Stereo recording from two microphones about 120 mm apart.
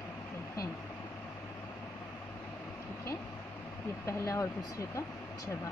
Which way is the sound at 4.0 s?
25° left (ahead or behind).